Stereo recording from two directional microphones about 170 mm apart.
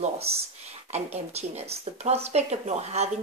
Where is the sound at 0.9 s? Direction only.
40° right (ahead or behind).